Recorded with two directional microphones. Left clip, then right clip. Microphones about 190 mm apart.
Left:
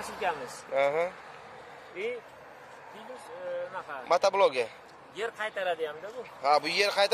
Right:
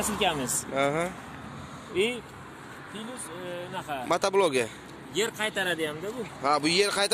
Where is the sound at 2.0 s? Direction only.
60° right (ahead or behind).